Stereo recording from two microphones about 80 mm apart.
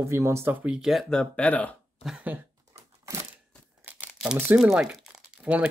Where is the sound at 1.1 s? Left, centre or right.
Centre.